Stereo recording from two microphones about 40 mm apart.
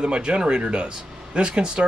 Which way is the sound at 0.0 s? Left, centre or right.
Right.